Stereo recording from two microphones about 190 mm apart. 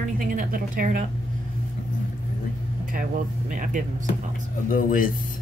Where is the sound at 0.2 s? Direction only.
45° right (ahead or behind).